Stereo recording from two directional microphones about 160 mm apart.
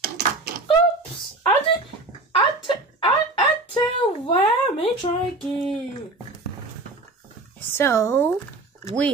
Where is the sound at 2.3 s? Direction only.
30° left (ahead or behind).